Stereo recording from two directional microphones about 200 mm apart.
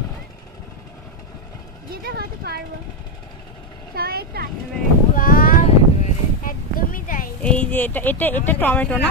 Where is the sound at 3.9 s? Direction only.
50° right (ahead or behind).